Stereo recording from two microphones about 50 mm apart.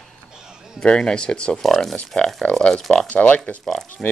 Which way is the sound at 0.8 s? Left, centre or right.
Centre.